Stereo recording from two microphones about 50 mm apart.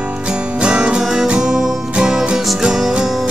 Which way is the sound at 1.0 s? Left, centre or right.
Centre.